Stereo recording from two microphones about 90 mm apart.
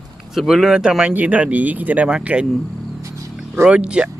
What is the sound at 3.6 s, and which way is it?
Speech, 10° right (ahead or behind).